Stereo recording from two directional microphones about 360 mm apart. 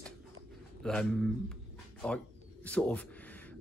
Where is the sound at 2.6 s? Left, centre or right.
Centre.